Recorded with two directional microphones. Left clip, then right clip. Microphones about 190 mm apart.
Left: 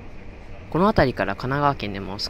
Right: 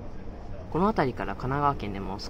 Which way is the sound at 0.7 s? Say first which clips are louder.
Left 7 dB; 25° left (ahead or behind).